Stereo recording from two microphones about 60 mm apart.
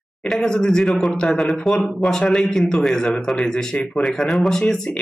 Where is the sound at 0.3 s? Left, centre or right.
Centre.